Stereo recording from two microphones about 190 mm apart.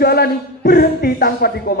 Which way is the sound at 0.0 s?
55° left (ahead or behind).